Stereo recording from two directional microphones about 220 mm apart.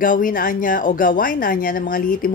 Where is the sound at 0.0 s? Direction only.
40° left (ahead or behind).